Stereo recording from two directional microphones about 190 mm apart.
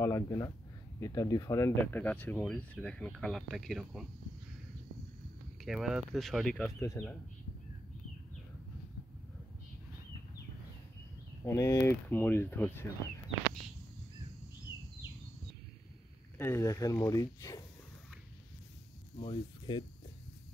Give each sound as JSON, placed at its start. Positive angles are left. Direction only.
{"t": 0.0, "sound": "speech", "side_deg": 15}
{"t": 5.6, "sound": "speech", "side_deg": 0}
{"t": 7.0, "sound": "speech", "side_deg": 15}
{"t": 11.4, "sound": "speech", "side_deg": 20}
{"t": 16.3, "sound": "speech", "side_deg": 15}
{"t": 19.1, "sound": "speech", "side_deg": 25}